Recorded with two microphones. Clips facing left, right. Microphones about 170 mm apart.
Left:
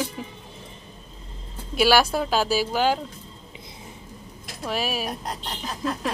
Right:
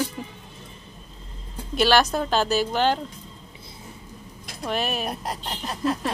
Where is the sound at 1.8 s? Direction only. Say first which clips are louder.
Even; 10° left (ahead or behind).